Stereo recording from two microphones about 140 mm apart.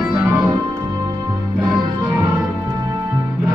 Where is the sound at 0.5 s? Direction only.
25° right (ahead or behind).